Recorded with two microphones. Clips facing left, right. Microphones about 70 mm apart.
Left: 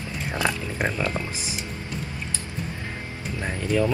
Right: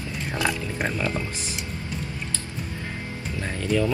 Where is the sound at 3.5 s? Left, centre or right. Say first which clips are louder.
Left 1 dB; centre.